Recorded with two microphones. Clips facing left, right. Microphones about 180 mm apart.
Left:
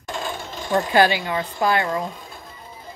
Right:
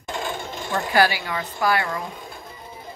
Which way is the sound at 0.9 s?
20° left (ahead or behind).